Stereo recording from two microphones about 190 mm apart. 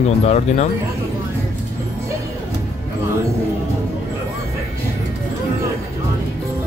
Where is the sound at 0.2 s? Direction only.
35° left (ahead or behind).